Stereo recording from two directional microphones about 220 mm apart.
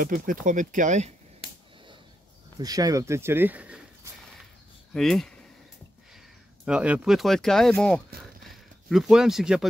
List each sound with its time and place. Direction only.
0.0 s speech: 40° right (ahead or behind)
2.6 s speech: 15° right (ahead or behind); by 5.3 s centre (ahead or behind)
6.6 s speech: 5° right (ahead or behind)
8.2 s a sound: centre (ahead or behind)